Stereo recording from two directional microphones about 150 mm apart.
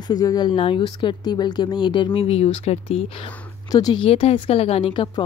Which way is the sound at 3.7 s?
30° left (ahead or behind).